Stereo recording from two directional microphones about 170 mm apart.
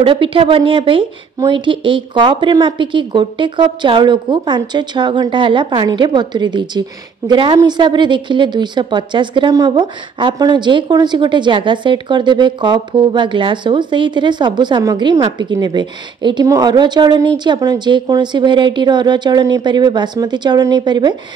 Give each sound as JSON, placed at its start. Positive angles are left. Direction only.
{"t": 0.0, "sound": "a woman's voice", "side_deg": -30}